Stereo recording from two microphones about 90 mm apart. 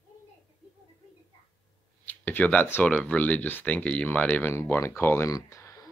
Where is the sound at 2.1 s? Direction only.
20° left (ahead or behind).